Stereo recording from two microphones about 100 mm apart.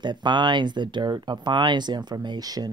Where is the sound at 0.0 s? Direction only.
50° right (ahead or behind).